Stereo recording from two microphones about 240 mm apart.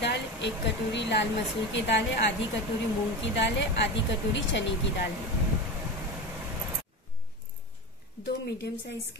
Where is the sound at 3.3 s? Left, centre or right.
Left.